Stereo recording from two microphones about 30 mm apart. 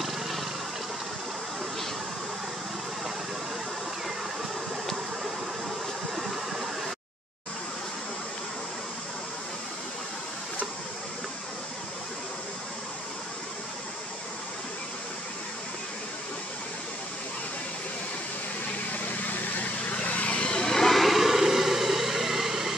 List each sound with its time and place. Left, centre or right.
0.0 s vehicle: centre
6.1 s a sound: centre
18.9 s vehicle: left
20.2 s vehicle: left
20.7 s vehicle: centre